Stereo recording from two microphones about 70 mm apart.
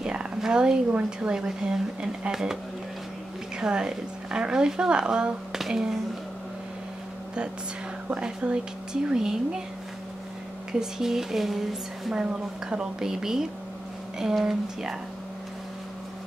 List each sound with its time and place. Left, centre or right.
0.0 s speech: centre
8.4 s speech: centre
10.7 s speech: centre